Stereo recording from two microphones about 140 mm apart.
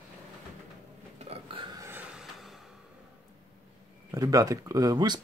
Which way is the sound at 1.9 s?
5° right (ahead or behind).